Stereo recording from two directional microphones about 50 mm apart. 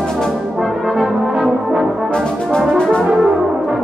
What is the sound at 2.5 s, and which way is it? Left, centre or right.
Brass instrument, centre.